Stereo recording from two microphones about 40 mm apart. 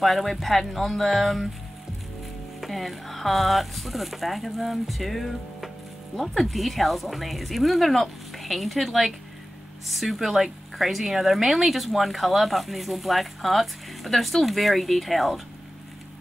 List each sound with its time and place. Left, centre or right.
0.0 s speech: centre
2.6 s speech: centre